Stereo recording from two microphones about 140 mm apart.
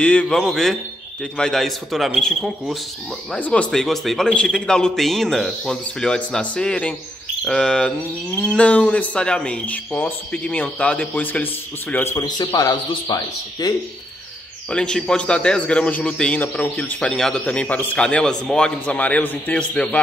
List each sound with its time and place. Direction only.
0.0 s a man's voice: 10° left (ahead or behind)
3.3 s a man's voice: 10° left (ahead or behind)
12.3 s speech: 30° left (ahead or behind)
14.7 s a man's voice: 5° left (ahead or behind)